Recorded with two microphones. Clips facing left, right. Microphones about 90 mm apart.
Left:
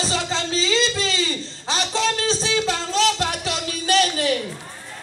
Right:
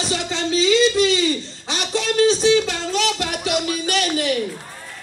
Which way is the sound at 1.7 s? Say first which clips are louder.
Left 1 dB; 35° left (ahead or behind).